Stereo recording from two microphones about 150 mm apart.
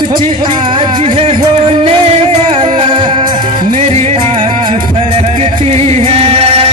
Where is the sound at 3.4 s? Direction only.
65° right (ahead or behind); by 6.7 s 40° right (ahead or behind).